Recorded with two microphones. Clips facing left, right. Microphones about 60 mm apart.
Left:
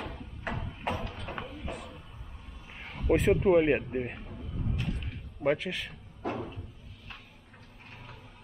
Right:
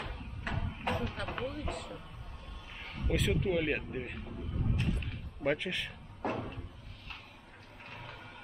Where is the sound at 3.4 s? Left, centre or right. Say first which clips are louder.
Left 8 dB; left.